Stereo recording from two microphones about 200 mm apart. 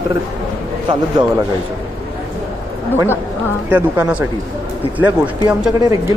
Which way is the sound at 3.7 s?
10° right (ahead or behind).